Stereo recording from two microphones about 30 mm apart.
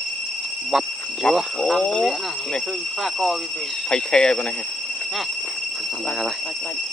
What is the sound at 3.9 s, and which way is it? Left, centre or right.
Speech, left.